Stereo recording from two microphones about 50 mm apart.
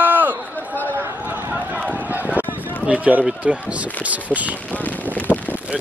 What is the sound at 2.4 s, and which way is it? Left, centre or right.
Run, right.